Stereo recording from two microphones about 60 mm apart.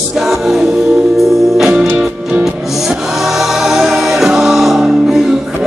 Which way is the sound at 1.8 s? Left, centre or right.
Right.